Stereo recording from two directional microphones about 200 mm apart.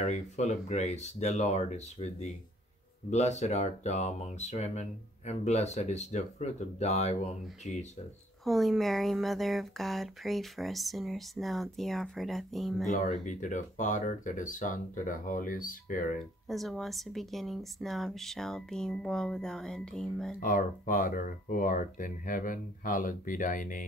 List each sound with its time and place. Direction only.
0.0 s speech: 35° left (ahead or behind)
8.5 s speech: centre (ahead or behind)
13.2 s speech: 40° left (ahead or behind)
16.4 s speech: centre (ahead or behind)
20.4 s speech: 45° left (ahead or behind)